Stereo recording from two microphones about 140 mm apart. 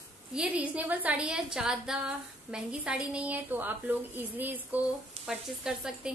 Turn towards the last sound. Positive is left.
turn(degrees=-5)  # may be behind; listen again after turning